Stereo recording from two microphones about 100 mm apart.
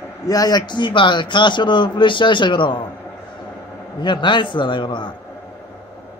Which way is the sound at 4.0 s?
50° left (ahead or behind).